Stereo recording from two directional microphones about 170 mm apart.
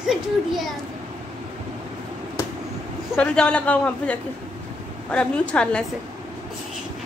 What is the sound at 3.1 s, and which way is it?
A man's voice, 5° left (ahead or behind).